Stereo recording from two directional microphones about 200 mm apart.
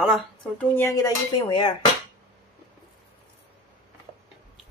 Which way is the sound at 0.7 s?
15° left (ahead or behind).